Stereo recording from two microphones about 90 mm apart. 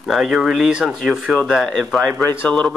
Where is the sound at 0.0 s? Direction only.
5° right (ahead or behind).